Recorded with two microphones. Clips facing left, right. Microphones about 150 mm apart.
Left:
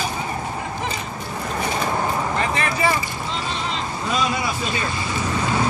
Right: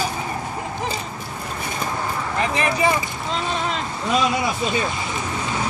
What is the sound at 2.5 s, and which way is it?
Speech, 20° right (ahead or behind).